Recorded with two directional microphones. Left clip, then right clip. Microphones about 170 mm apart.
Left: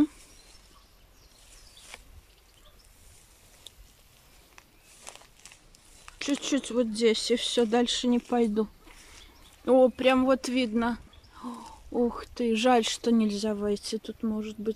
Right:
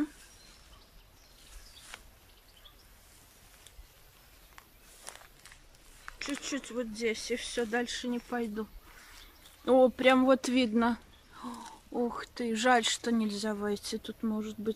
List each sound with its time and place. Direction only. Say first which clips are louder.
1.9 s a sound: left 1 dB; 10° left (ahead or behind)
4.6 s walk: left 1 dB; 15° left (ahead or behind)
6.1 s speech: left 8 dB; 25° left (ahead or behind)
9.7 s speech: left 2 dB; 5° left (ahead or behind)